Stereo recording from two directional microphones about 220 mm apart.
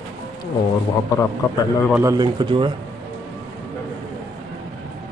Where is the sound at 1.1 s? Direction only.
15° left (ahead or behind).